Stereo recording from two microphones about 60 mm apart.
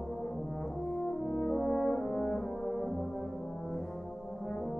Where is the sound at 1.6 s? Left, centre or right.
Centre.